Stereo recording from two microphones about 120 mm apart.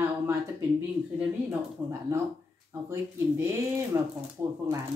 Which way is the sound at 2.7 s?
20° right (ahead or behind).